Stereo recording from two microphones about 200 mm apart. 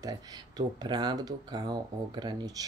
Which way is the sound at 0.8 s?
20° right (ahead or behind).